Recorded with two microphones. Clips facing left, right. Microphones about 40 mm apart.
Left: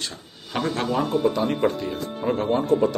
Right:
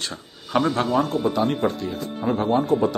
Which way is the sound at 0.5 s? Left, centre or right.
Centre.